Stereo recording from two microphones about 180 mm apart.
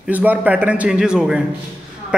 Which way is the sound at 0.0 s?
10° right (ahead or behind).